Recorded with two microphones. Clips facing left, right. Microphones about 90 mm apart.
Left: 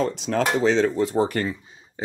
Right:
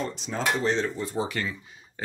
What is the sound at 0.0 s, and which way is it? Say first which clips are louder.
Speech: left 7 dB; 75° left (ahead or behind).